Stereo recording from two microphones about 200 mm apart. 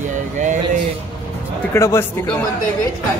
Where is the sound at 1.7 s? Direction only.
15° left (ahead or behind).